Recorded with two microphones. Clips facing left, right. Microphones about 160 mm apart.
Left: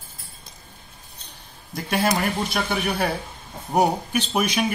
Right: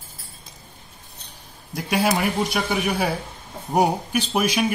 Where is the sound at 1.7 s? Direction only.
10° right (ahead or behind).